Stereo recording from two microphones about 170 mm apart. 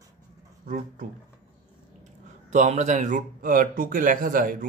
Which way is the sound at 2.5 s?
45° right (ahead or behind).